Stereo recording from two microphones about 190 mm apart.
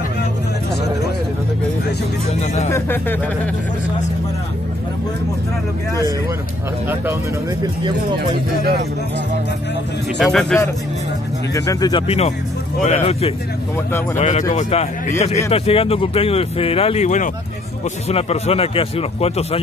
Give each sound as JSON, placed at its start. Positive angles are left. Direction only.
{"t": 2.7, "sound": "speech", "side_deg": 10}
{"t": 7.6, "sound": "speech", "side_deg": -25}
{"t": 10.1, "sound": "speech", "side_deg": 0}
{"t": 11.5, "sound": "speech", "side_deg": 15}
{"t": 12.1, "sound": "speech", "side_deg": 35}